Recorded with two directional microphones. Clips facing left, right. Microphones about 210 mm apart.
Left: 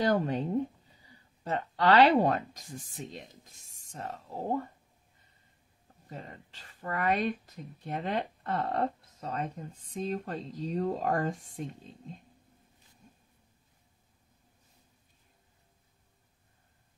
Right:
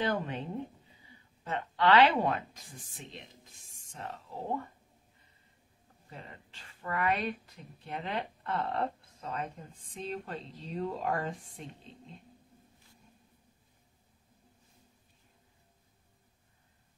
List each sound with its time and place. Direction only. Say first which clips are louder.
0.0 s speech: left 5 dB; 40° left (ahead or behind)
1.4 s speech: left 1 dB; 40° left (ahead or behind)
6.0 s speech: left 4 dB; 40° left (ahead or behind)